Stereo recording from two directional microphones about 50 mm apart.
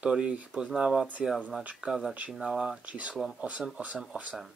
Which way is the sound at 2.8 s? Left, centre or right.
Right.